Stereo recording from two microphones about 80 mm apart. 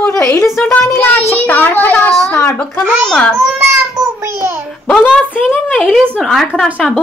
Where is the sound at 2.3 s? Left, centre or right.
Left.